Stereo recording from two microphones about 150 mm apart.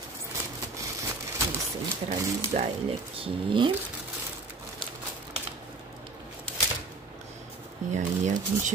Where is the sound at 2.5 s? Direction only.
50° right (ahead or behind).